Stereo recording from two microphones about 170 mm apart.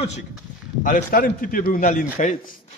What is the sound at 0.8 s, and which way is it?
A man's voice, 50° left (ahead or behind).